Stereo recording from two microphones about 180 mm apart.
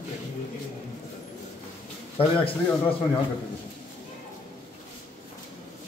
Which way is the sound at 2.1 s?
30° left (ahead or behind).